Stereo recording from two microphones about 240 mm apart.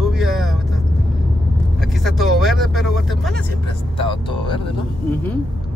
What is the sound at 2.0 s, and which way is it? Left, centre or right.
Speech, centre.